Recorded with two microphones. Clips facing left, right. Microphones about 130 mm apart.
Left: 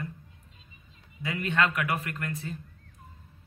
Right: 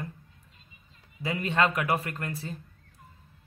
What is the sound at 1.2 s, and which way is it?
A man's voice, 30° right (ahead or behind).